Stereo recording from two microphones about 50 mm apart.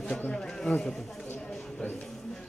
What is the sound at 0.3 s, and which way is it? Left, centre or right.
Speech, centre.